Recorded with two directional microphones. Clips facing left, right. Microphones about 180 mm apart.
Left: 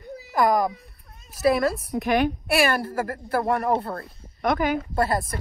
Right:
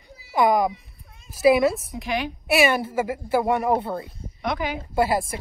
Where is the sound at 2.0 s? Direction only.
50° left (ahead or behind).